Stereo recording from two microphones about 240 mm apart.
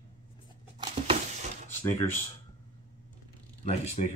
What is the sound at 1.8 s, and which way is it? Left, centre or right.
Speech, centre.